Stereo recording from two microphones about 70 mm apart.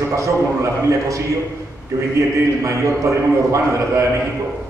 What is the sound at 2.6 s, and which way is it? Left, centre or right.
A man's voice, right.